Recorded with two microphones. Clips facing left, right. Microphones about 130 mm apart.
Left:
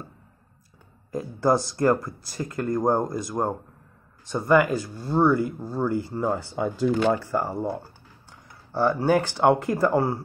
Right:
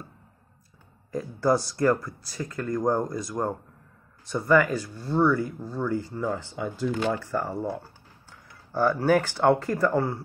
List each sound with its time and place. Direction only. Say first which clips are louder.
1.1 s speech: left 1 dB; 25° left (ahead or behind); by 7.0 s 45° left (ahead or behind)
7.2 s speech: left 2 dB; 30° left (ahead or behind)
8.7 s speech: left 1 dB; 15° left (ahead or behind); by 10.1 s 30° left (ahead or behind)